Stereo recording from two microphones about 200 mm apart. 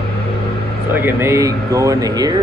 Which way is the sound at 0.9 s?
10° right (ahead or behind).